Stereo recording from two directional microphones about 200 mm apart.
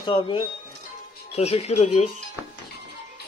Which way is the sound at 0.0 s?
25° left (ahead or behind).